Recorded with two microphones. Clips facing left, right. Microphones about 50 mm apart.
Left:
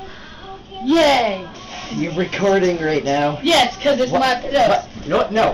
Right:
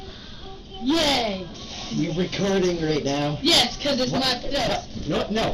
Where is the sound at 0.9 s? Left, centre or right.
Left.